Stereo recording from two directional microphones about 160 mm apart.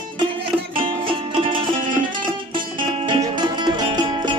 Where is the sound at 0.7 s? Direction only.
35° right (ahead or behind).